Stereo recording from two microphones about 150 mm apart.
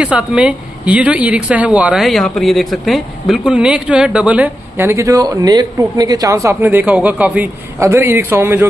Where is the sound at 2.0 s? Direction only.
5° left (ahead or behind).